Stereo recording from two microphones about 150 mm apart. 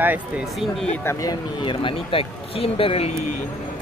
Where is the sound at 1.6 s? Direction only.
35° left (ahead or behind).